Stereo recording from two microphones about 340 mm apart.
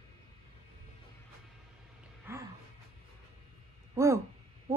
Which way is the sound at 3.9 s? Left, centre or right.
Centre.